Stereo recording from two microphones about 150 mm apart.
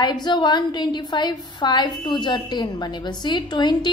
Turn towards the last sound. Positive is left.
turn(degrees=30)  # may be behind; listen again after turning